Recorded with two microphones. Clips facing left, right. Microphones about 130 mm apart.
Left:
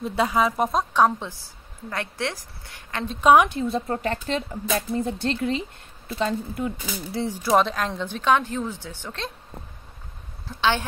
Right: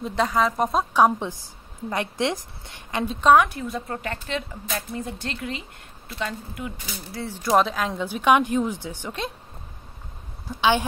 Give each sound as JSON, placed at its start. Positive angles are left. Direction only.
{"t": 0.0, "sound": "speech", "side_deg": 5}
{"t": 0.9, "sound": "a woman's voice", "side_deg": -15}
{"t": 3.2, "sound": "a woman's voice", "side_deg": 10}
{"t": 3.4, "sound": "speech", "side_deg": 25}
{"t": 7.2, "sound": "a woman's voice", "side_deg": 10}
{"t": 7.5, "sound": "a woman's voice", "side_deg": 0}
{"t": 10.5, "sound": "a woman's voice", "side_deg": -15}